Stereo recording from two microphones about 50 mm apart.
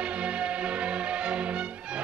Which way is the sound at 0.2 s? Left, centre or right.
Right.